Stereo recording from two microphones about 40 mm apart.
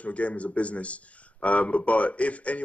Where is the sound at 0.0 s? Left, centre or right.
Left.